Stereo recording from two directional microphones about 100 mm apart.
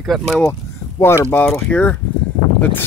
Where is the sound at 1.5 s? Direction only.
15° left (ahead or behind).